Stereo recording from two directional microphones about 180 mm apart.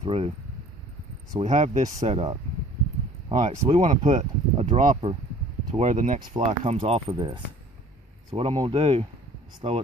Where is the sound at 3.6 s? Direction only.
35° right (ahead or behind).